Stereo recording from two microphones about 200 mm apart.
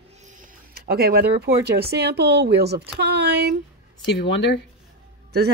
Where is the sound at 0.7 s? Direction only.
50° right (ahead or behind).